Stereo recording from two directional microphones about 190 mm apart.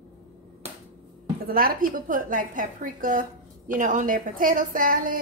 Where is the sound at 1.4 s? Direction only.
50° right (ahead or behind).